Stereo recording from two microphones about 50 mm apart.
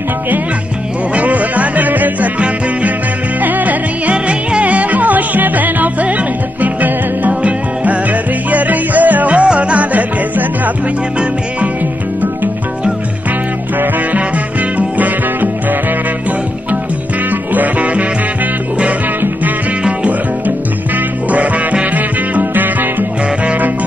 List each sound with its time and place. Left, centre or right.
1.1 s music: right
3.4 s music: right
14.8 s music: right
17.3 s music: right
21.3 s music: right